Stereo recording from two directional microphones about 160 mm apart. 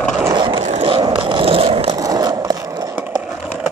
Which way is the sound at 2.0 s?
25° right (ahead or behind).